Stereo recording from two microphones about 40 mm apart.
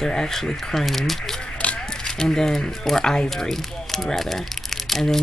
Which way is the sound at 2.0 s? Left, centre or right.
Centre.